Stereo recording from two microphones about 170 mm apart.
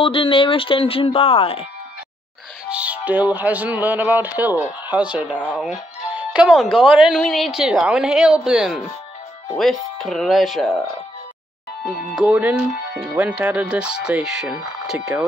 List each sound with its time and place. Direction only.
0.0 s speech: 30° left (ahead or behind)
2.7 s speech: 10° right (ahead or behind)
11.8 s speech: 5° right (ahead or behind)